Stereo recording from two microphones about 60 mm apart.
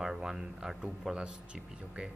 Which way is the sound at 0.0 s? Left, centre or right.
Centre.